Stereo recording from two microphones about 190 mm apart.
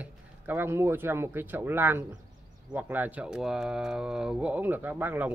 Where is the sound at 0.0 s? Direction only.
10° right (ahead or behind).